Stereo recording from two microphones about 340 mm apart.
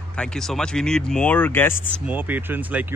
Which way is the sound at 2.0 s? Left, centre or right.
Centre.